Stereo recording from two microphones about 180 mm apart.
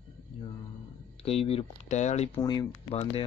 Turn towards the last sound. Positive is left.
turn(degrees=30)  # may be behind; listen again after turning